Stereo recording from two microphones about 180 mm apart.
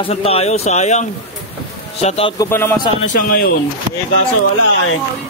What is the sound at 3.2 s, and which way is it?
Speech, 55° left (ahead or behind).